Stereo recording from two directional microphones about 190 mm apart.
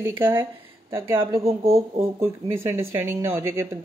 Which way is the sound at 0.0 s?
10° right (ahead or behind).